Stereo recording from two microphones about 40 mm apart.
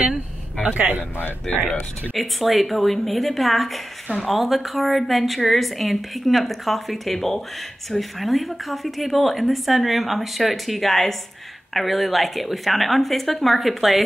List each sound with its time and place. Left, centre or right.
0.7 s speech: right
2.1 s speech: centre